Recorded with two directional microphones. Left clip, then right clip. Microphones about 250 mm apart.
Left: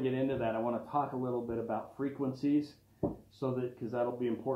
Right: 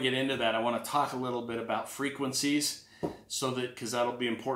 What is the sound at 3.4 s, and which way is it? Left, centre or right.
Speech, right.